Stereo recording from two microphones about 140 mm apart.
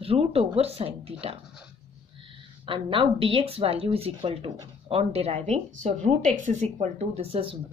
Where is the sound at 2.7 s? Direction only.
40° right (ahead or behind).